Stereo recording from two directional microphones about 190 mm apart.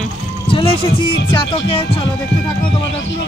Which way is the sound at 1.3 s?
30° left (ahead or behind).